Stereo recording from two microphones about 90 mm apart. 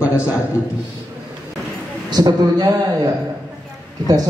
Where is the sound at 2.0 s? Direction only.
45° right (ahead or behind).